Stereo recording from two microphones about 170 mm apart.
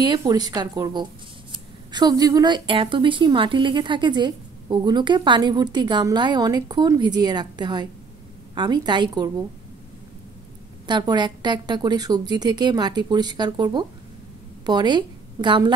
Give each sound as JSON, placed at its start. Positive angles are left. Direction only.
{"t": 0.0, "sound": "a woman's voice", "side_deg": -25}
{"t": 10.9, "sound": "a woman's voice", "side_deg": -25}